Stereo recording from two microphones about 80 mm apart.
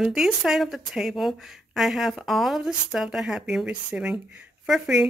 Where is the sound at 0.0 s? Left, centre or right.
Centre.